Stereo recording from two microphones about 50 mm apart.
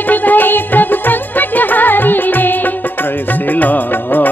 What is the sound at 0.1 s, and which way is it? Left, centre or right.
Music, left.